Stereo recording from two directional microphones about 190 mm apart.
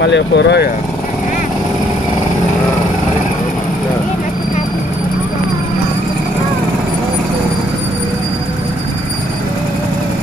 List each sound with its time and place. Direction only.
0.0 s speech: 65° left (ahead or behind)